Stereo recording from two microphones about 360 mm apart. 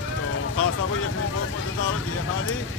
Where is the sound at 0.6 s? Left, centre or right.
Left.